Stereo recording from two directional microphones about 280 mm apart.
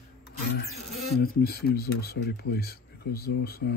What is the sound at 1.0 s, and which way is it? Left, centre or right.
Speech, left.